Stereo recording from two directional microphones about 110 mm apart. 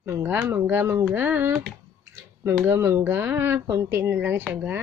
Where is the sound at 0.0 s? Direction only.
20° right (ahead or behind).